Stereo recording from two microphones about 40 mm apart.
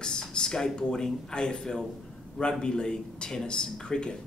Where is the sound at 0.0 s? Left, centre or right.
Centre.